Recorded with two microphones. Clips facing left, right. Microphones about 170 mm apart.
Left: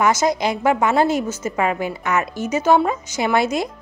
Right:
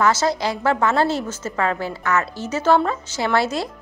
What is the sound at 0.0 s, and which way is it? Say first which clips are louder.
Speech: left 1 dB; 15° left (ahead or behind).